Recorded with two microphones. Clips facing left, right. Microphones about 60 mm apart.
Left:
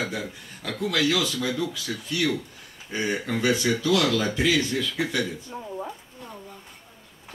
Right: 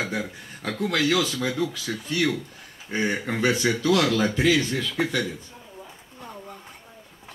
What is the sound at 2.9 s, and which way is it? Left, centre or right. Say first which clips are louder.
Speech: right 1 dB; right.